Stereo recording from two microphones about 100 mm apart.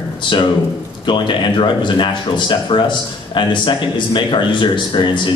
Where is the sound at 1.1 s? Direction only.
55° left (ahead or behind).